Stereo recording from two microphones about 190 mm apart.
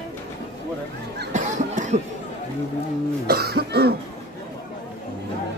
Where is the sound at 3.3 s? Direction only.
55° right (ahead or behind).